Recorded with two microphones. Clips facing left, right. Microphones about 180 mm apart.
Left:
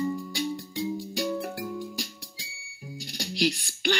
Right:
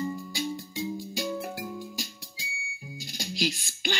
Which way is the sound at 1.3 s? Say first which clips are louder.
Left 2 dB; 5° right (ahead or behind).